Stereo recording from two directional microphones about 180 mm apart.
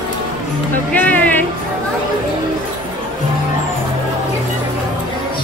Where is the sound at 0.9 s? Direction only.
10° left (ahead or behind).